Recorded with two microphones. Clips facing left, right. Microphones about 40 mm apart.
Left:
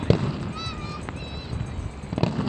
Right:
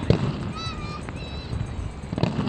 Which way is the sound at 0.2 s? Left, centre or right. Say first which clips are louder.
Even; centre.